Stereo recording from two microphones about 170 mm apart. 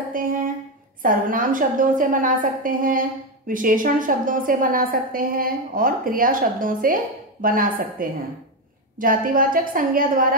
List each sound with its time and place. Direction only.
0.2 s a woman's voice: 55° right (ahead or behind)